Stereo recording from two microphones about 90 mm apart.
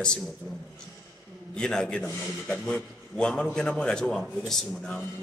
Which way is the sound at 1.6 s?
10° left (ahead or behind).